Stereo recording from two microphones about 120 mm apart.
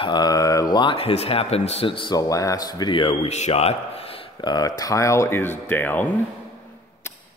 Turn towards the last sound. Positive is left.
turn(degrees=20)  # may be behind; listen again after turning